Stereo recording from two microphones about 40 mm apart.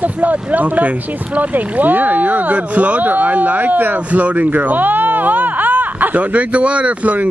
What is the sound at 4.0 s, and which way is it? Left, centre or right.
Speech, right.